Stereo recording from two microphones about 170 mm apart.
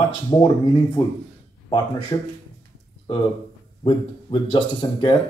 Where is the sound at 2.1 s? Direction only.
25° left (ahead or behind).